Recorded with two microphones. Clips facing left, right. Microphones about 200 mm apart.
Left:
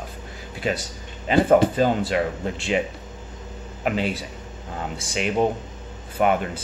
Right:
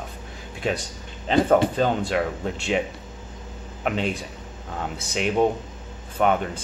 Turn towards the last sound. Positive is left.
turn(degrees=5)  # may be behind; listen again after turning